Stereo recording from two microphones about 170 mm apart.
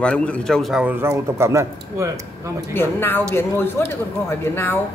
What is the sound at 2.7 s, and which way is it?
A woman's voice, 10° left (ahead or behind).